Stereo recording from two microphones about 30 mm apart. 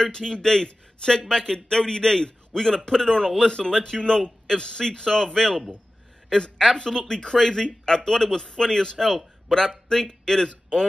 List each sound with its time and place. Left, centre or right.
0.0 s a man's voice: left
3.5 s speech: left
6.8 s speech: centre